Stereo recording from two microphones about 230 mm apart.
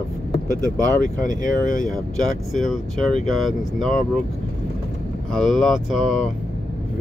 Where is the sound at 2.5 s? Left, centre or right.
Centre.